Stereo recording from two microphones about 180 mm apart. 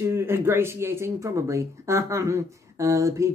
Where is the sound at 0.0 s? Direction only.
15° right (ahead or behind).